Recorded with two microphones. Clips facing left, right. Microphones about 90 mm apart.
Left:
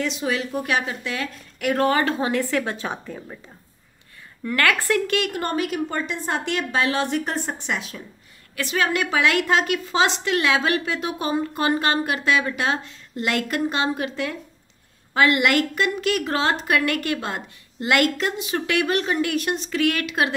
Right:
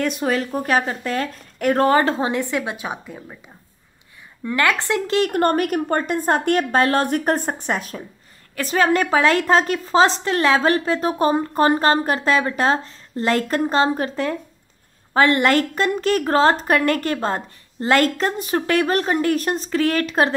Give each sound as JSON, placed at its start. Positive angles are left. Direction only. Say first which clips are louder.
{"t": 0.0, "sound": "a woman's voice", "louder": "right 4 dB", "side_deg": -45}
{"t": 4.5, "sound": "speech", "louder": "right 1 dB", "side_deg": -20}
{"t": 5.3, "sound": "a woman's voice", "louder": "right 6 dB", "side_deg": -50}